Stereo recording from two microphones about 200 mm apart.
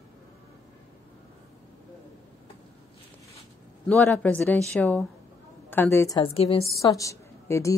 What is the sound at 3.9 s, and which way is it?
A woman's voice, 5° left (ahead or behind).